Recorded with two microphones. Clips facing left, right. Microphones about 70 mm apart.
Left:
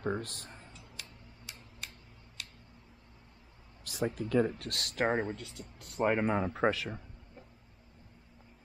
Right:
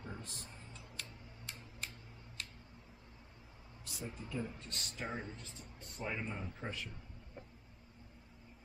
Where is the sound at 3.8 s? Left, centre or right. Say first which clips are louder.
Left 13 dB; left.